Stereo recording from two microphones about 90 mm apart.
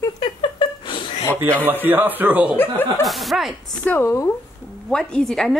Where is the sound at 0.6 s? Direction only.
65° left (ahead or behind).